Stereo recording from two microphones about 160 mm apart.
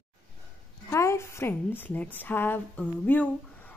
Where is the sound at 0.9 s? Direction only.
15° left (ahead or behind).